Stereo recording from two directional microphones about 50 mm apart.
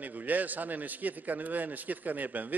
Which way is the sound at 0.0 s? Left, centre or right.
Right.